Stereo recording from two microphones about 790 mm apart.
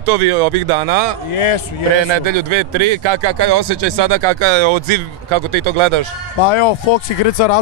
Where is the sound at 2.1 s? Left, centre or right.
Right.